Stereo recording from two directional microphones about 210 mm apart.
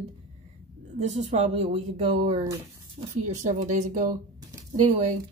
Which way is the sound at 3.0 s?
35° right (ahead or behind).